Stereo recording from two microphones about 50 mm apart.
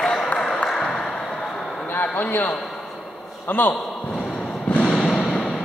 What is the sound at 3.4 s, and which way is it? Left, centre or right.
Speech, left.